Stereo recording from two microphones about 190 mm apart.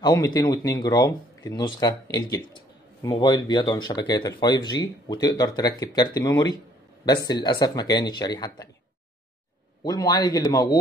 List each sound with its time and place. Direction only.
0.0 s speech: 20° left (ahead or behind)
9.8 s speech: 20° left (ahead or behind)